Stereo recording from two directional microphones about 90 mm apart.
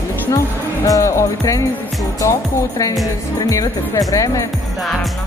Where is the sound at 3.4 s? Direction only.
40° left (ahead or behind).